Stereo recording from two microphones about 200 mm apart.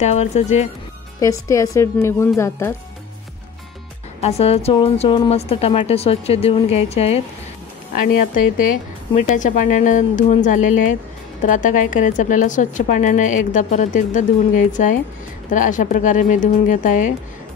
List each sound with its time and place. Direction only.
0.0 s a woman's voice: 35° left (ahead or behind)
1.2 s a woman's voice: 15° left (ahead or behind)
4.2 s a woman's voice: 30° left (ahead or behind)
7.9 s a woman's voice: 45° left (ahead or behind)